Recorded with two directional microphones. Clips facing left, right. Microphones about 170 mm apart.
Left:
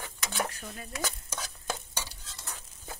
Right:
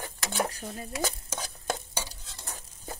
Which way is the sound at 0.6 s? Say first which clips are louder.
Right 4 dB; 30° right (ahead or behind).